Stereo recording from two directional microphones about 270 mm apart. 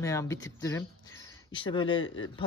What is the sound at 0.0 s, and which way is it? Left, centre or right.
Speech, centre.